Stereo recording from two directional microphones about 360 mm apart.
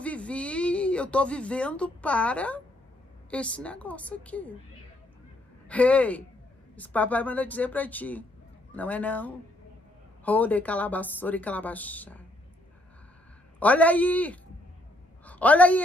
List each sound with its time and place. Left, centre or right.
0.0 s speech: centre
5.7 s speech: centre
13.6 s a woman's voice: centre